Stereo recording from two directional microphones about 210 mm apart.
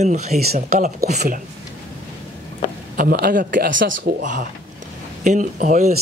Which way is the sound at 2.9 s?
45° right (ahead or behind).